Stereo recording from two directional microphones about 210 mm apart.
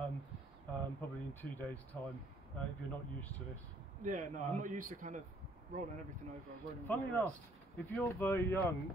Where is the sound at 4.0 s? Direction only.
35° right (ahead or behind).